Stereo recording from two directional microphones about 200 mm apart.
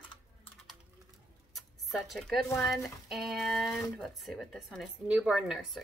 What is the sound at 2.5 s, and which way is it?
Speech, centre (ahead or behind).